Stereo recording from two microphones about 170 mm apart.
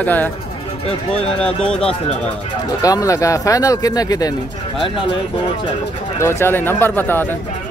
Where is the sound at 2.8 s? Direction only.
20° left (ahead or behind).